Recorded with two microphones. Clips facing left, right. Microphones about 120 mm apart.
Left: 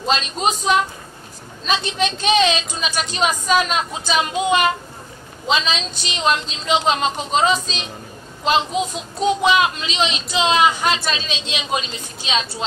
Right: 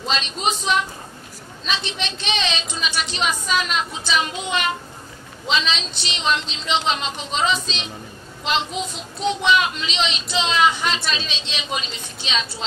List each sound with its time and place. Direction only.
0.0 s a woman's voice: 45° left (ahead or behind)